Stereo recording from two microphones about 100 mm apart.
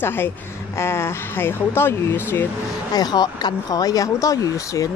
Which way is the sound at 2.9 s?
45° left (ahead or behind).